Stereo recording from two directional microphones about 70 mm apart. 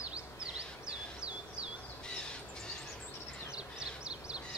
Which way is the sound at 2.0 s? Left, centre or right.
Centre.